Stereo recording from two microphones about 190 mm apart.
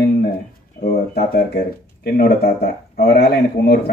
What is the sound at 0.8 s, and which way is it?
Speech, 55° left (ahead or behind).